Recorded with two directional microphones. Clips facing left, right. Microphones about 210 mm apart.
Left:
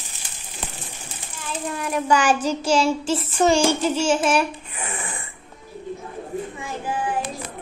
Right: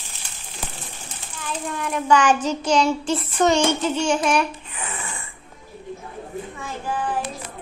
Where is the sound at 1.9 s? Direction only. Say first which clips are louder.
Right 2 dB; 35° left (ahead or behind).